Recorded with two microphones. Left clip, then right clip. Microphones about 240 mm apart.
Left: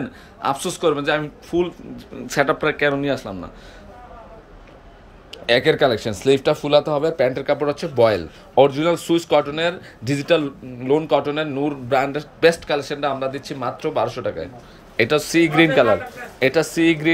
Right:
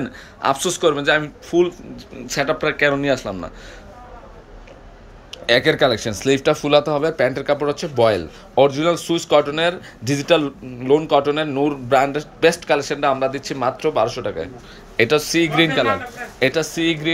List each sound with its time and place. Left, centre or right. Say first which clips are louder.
0.0 s speech: right 3 dB; centre
5.3 s speech: right 1 dB; centre